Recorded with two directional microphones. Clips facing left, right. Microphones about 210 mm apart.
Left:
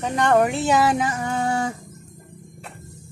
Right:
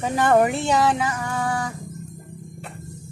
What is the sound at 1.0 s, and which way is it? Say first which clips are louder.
Music: left 2 dB; 25° left (ahead or behind).